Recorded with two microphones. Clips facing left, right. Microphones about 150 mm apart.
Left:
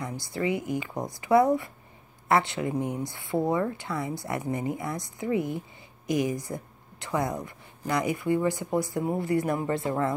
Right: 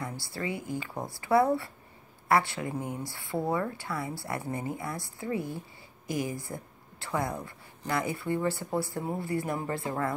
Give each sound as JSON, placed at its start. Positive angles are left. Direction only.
{"t": 0.0, "sound": "a woman's voice", "side_deg": 20}